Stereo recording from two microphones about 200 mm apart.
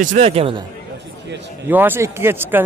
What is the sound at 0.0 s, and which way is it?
Speech, 35° right (ahead or behind).